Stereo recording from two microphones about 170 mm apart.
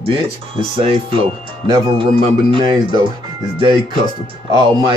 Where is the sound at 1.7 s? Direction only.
30° right (ahead or behind).